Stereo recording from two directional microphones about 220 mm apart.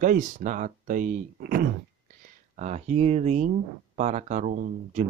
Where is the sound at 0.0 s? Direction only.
35° right (ahead or behind).